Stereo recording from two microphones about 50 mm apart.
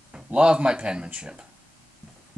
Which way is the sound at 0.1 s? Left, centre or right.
Centre.